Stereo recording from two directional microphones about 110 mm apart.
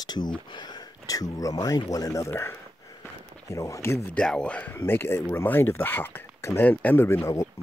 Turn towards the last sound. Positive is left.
turn(degrees=20)  # may be behind; listen again after turning